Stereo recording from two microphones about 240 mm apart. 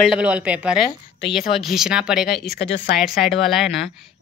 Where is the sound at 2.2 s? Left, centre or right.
Left.